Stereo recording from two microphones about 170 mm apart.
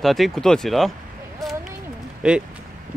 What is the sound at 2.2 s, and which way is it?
Speech, 5° right (ahead or behind).